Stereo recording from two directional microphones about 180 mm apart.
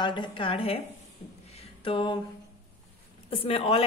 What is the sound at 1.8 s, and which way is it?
Speech, 30° left (ahead or behind).